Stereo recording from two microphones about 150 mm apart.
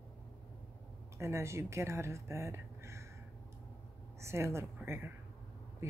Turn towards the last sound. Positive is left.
turn(degrees=-15)  # may be behind; listen again after turning